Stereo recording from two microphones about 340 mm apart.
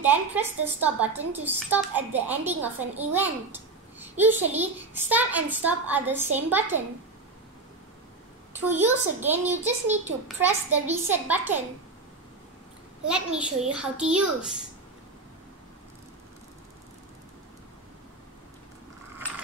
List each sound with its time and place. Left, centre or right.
0.0 s a woman's voice: centre
8.5 s a woman's voice: centre
9.7 s a child's voice: centre
10.2 s a woman's voice: centre
13.1 s a woman's voice: centre